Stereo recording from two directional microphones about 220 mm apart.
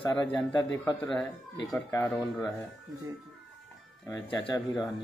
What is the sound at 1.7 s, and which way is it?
Speech, 15° left (ahead or behind).